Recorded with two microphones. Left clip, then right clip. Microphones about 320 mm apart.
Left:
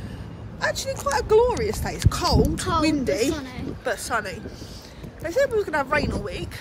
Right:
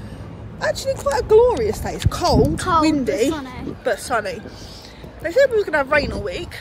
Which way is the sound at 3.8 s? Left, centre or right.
Centre.